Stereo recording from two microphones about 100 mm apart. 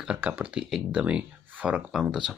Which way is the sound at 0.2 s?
15° right (ahead or behind).